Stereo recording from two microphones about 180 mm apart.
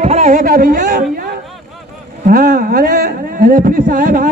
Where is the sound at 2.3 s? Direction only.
55° right (ahead or behind).